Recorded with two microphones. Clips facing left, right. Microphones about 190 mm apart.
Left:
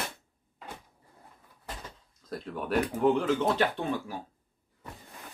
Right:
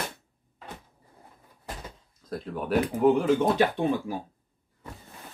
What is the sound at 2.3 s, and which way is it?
Speech, centre (ahead or behind).